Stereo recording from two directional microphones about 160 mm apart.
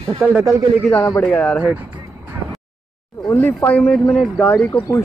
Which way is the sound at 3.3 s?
15° left (ahead or behind).